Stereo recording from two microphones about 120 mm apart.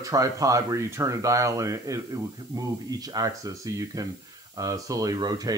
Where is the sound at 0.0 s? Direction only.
30° right (ahead or behind).